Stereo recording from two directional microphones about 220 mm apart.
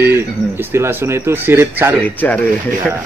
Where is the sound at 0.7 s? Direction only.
10° right (ahead or behind).